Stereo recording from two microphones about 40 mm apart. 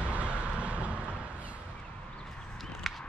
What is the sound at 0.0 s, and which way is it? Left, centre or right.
Vehicle, right.